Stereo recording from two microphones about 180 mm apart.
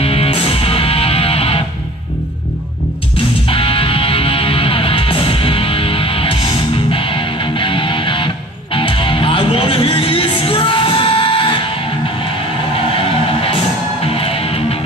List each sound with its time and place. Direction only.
0.0 s music: 30° left (ahead or behind)
3.4 s music: 30° left (ahead or behind)
14.1 s music: 30° left (ahead or behind)